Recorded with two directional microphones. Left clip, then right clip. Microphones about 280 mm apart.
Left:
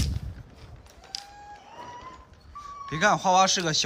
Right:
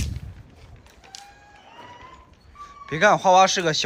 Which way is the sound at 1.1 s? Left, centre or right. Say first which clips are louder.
Left 4 dB; centre.